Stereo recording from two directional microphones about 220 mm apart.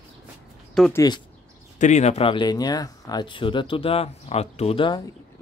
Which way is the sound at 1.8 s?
30° left (ahead or behind).